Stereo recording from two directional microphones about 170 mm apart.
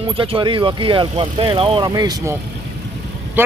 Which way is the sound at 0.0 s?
30° right (ahead or behind).